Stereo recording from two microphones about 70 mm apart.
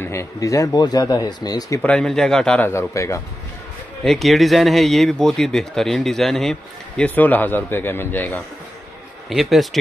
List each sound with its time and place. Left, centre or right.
0.0 s speech: left
1.8 s a man's voice: centre
2.0 s a man's voice: centre
2.7 s speech: left
4.0 s speech: centre
7.2 s a man's voice: left
9.3 s speech: centre